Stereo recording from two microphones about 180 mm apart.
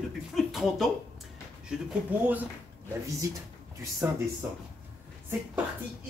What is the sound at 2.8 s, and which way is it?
Speech, 15° right (ahead or behind).